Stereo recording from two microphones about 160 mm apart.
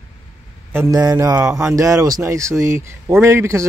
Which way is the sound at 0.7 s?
20° right (ahead or behind).